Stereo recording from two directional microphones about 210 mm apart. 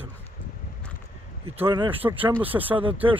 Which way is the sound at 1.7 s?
25° right (ahead or behind).